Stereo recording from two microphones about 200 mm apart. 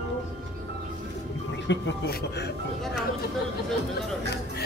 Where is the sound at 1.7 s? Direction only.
55° left (ahead or behind).